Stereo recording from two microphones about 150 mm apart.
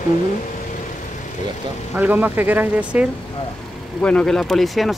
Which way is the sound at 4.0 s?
10° left (ahead or behind).